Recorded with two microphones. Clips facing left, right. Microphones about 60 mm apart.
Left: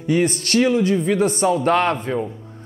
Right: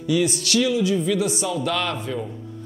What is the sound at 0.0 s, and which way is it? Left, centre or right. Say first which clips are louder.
A man's voice: left 2 dB; left.